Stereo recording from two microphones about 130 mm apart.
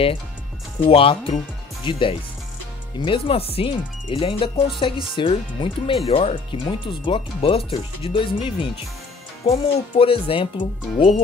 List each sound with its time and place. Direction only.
0.8 s speech: 45° left (ahead or behind)